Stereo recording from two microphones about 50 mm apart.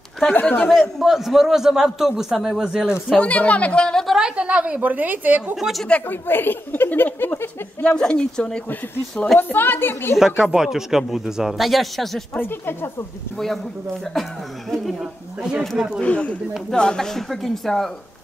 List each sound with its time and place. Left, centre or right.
0.3 s speech: left
0.7 s a man's voice: centre
3.2 s a woman's voice: left
4.4 s a woman's voice: right
5.6 s a man's voice: centre
6.0 s speech: left
7.8 s a woman's voice: centre
9.4 s speech: left
10.1 s a man's voice: centre
12.4 s speech: left
15.0 s a man's voice: centre
16.0 s a woman's voice: left; by 17.9 s centre